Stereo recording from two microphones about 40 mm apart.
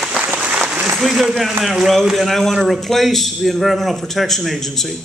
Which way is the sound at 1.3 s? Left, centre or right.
Centre.